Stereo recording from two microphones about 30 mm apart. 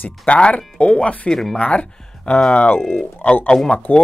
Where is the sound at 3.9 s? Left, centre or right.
Left.